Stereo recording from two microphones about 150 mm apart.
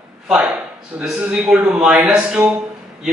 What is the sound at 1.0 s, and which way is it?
A man's voice, 5° right (ahead or behind).